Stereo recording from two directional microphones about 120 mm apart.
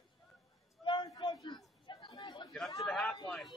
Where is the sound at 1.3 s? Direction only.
35° left (ahead or behind).